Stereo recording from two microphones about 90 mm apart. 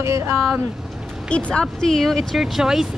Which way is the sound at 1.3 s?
10° left (ahead or behind).